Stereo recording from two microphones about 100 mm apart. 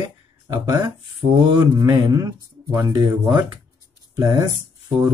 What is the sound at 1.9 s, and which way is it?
Speech, 40° right (ahead or behind).